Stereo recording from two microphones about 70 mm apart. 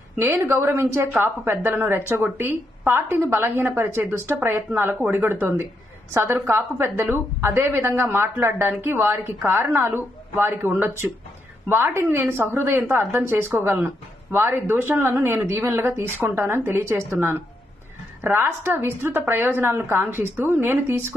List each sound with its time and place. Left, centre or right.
0.2 s speech: right